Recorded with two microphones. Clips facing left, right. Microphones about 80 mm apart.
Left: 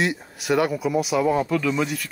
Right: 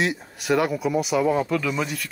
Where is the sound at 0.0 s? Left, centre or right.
Centre.